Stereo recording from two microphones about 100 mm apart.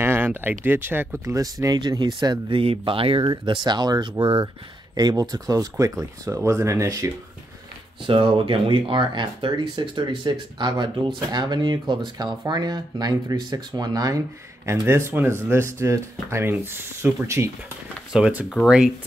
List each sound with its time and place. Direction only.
0.0 s speech: 20° right (ahead or behind); by 2.6 s 45° right (ahead or behind)
2.6 s speech: 65° right (ahead or behind)
3.3 s speech: 50° right (ahead or behind)
4.2 s speech: 60° right (ahead or behind)
4.9 s speech: 40° right (ahead or behind)
8.1 s speech: 60° right (ahead or behind); by 14.2 s 40° right (ahead or behind)
14.7 s speech: 25° right (ahead or behind)
18.1 s speech: 10° right (ahead or behind)